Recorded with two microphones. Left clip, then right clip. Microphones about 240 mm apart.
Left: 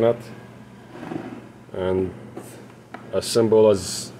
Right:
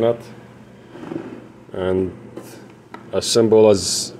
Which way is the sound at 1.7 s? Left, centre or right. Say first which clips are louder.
Right 3 dB; centre.